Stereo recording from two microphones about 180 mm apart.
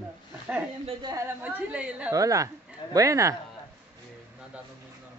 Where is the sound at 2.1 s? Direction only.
20° right (ahead or behind).